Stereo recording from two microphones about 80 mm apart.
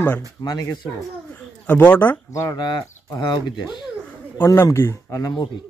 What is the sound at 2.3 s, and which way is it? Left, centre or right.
Speech, left.